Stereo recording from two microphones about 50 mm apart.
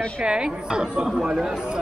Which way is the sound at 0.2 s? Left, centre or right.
Centre.